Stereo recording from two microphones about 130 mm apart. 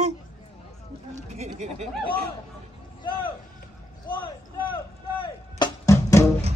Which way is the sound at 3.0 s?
40° left (ahead or behind).